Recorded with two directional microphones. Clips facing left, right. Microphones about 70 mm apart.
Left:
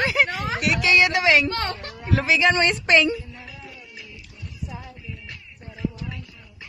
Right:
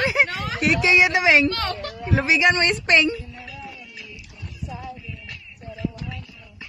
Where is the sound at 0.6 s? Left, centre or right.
Right.